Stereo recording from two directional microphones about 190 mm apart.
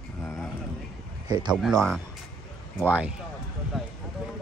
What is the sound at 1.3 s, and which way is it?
Speech, 20° right (ahead or behind).